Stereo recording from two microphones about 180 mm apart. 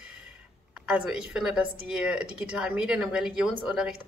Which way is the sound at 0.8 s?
5° right (ahead or behind).